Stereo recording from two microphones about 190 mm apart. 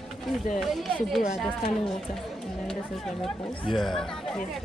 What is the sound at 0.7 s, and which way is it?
Speech, centre (ahead or behind).